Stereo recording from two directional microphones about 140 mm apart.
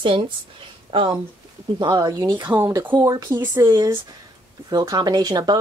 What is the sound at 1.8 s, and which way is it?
Speech, 25° right (ahead or behind).